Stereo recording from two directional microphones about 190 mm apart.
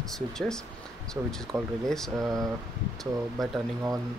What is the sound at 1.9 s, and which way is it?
Speech, centre (ahead or behind).